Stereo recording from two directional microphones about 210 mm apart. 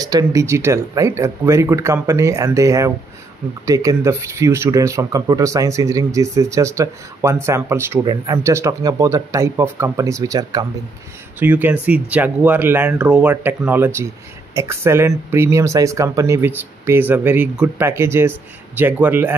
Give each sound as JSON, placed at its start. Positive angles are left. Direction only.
{"t": 0.0, "sound": "speech", "side_deg": -15}